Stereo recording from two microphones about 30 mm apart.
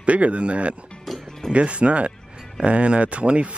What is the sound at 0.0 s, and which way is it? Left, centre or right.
Speech, right.